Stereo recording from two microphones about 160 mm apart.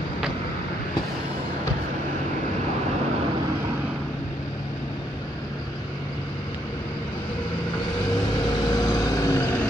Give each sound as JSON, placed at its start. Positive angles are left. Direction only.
{"t": 8.7, "sound": "vehicle", "side_deg": 25}